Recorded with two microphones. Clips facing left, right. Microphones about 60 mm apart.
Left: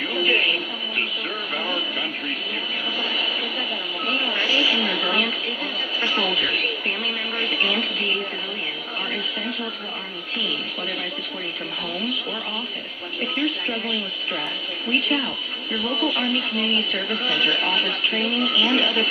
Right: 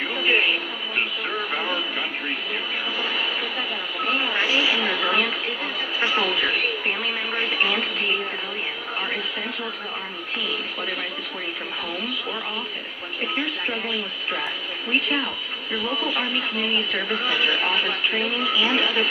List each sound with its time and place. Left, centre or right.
0.1 s television: right
1.5 s radio: centre
3.0 s a sound: centre
5.9 s a woman's voice: centre
13.2 s a woman's voice: right
14.9 s speech: centre